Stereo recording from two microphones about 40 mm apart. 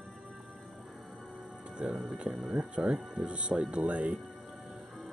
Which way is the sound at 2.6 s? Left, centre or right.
Right.